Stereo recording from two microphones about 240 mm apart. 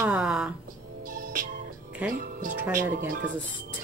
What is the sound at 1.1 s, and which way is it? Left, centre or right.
Music, right.